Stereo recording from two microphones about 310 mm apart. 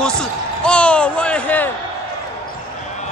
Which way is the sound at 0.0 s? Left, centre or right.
Centre.